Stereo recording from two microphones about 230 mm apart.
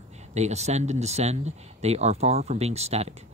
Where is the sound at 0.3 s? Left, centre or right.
Right.